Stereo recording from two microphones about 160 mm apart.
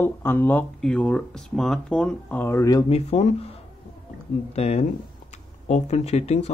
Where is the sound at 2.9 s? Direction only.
45° left (ahead or behind).